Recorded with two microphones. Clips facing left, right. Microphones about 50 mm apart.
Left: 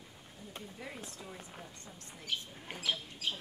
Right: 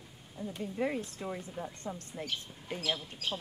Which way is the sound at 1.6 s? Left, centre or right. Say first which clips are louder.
Right 10 dB; right.